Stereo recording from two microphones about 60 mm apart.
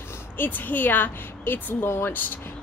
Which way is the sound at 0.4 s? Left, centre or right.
Left.